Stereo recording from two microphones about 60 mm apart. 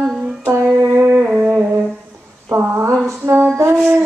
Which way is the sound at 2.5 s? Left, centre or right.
Right.